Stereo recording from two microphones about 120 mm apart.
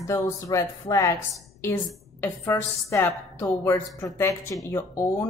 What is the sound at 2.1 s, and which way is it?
A woman's voice, 15° left (ahead or behind).